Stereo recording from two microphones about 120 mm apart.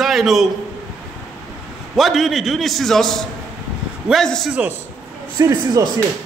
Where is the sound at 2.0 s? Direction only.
Centre (ahead or behind).